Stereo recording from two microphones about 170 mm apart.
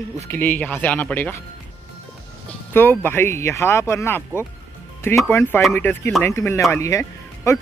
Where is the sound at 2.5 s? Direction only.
10° left (ahead or behind).